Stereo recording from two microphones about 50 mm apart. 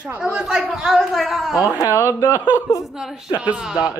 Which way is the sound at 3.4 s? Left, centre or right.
Centre.